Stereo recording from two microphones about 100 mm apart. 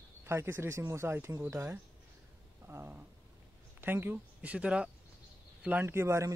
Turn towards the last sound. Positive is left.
turn(degrees=-30)  # may be behind; listen again after turning